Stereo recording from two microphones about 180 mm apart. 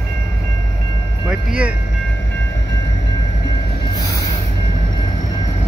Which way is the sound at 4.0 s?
20° left (ahead or behind).